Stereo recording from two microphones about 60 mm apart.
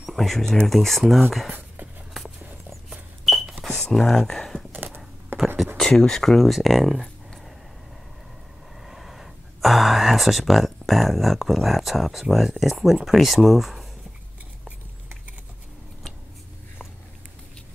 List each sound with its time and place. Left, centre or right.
0.0 s speech: centre
2.1 s a sound: centre
3.5 s computer keyboard: centre
4.7 s typing: right
5.8 s speech: centre
8.8 s speech: centre